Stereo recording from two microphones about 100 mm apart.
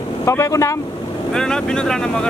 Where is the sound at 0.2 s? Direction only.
30° left (ahead or behind).